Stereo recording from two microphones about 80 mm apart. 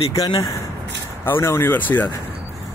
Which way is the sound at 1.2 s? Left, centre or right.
Left.